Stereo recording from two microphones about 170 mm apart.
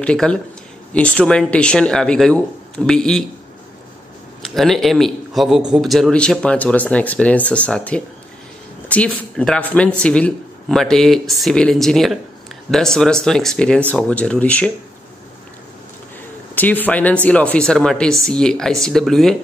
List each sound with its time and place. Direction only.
0.0 s a man's voice: 5° left (ahead or behind)
4.6 s a man's voice: centre (ahead or behind)
16.5 s a man's voice: 10° left (ahead or behind)